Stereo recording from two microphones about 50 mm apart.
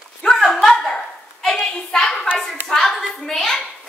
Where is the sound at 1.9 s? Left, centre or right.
Centre.